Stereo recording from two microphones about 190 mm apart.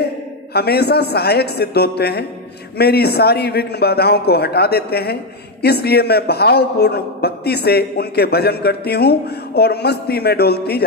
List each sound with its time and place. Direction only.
0.5 s a man's voice: 55° left (ahead or behind)